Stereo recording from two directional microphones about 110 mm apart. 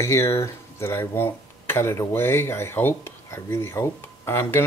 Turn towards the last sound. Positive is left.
turn(degrees=20)  # may be behind; listen again after turning